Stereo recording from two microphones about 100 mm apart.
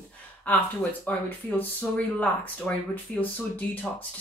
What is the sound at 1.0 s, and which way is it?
Speech, 20° left (ahead or behind).